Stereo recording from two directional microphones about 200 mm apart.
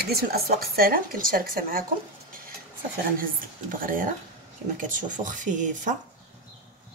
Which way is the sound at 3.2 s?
45° right (ahead or behind).